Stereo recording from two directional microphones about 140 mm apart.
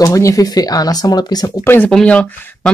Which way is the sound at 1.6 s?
15° left (ahead or behind).